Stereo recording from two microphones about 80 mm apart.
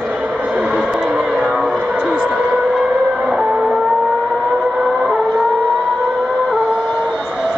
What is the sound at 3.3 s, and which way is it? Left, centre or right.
Music, centre.